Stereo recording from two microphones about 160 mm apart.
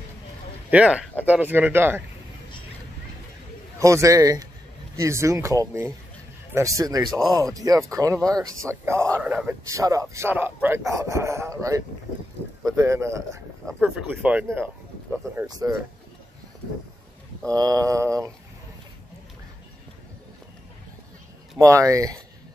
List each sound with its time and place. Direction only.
0.7 s speech: 5° right (ahead or behind)
3.8 s speech: 20° right (ahead or behind)
9.7 s speech: 20° right (ahead or behind)
13.7 s speech: 5° right (ahead or behind)
15.4 s speech: 25° right (ahead or behind)
17.5 s speech: 20° right (ahead or behind)
21.5 s speech: 20° right (ahead or behind)